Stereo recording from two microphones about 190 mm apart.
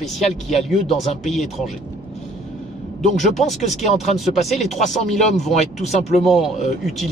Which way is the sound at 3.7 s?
Centre (ahead or behind).